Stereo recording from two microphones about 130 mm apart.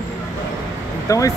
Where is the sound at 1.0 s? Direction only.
25° left (ahead or behind).